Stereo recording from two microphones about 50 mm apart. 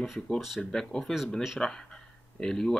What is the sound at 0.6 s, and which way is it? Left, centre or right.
Speech, centre.